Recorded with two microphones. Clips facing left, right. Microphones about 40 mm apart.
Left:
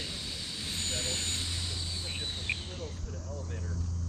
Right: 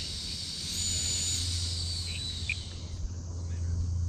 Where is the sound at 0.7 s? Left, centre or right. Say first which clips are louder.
Left 2 dB; left.